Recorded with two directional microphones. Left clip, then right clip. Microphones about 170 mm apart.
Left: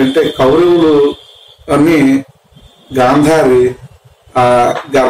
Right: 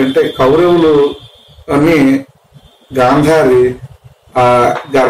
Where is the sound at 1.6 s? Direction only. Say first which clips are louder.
Even; 20° left (ahead or behind).